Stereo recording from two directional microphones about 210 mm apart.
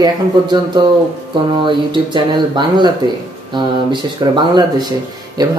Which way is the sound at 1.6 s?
20° right (ahead or behind).